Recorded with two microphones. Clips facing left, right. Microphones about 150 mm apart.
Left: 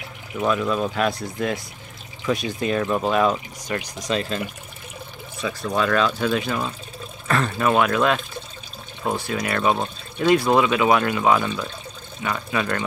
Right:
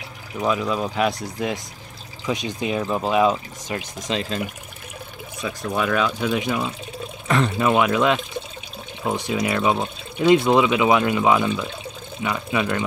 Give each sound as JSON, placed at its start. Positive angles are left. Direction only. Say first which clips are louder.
{"t": 0.5, "sound": "speech", "louder": "left 1 dB", "side_deg": -10}
{"t": 5.7, "sound": "speech", "louder": "left 1 dB", "side_deg": -10}